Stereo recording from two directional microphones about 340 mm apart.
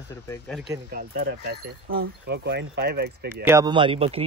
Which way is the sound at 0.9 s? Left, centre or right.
Right.